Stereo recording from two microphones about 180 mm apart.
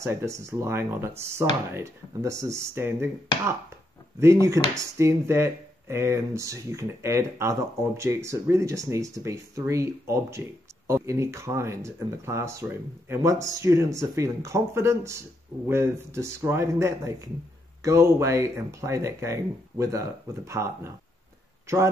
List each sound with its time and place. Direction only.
0.0 s speech: 15° right (ahead or behind)